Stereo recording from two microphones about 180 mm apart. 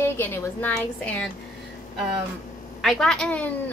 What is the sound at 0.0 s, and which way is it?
A woman's voice, 10° left (ahead or behind).